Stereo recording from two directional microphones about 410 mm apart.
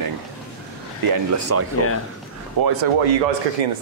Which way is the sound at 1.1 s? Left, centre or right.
Right.